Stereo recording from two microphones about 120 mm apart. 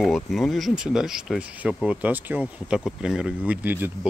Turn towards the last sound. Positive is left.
turn(degrees=-15)  # may be behind; listen again after turning